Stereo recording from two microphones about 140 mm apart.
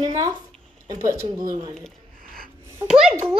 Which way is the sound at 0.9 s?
25° right (ahead or behind).